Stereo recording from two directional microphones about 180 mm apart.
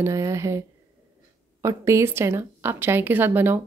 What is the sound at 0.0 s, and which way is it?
Speech, 15° right (ahead or behind).